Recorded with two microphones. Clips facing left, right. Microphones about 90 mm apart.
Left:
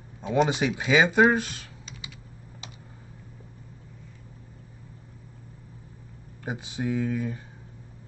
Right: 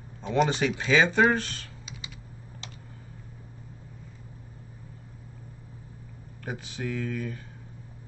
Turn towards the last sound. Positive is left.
turn(degrees=20)  # may be behind; listen again after turning